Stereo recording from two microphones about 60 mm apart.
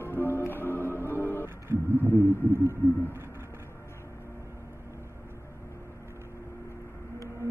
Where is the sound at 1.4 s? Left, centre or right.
Right.